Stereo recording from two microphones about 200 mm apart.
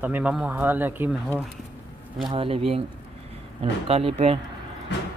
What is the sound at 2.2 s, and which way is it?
Speech, 25° right (ahead or behind).